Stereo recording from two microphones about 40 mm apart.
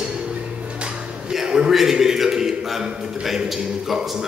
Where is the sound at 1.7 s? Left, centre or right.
Centre.